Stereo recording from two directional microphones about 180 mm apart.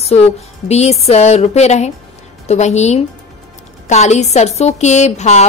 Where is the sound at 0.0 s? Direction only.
35° left (ahead or behind).